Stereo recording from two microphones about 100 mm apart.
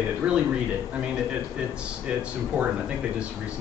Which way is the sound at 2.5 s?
15° right (ahead or behind).